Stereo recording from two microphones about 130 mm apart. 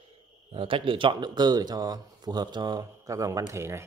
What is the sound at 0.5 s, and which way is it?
Speech, 45° right (ahead or behind).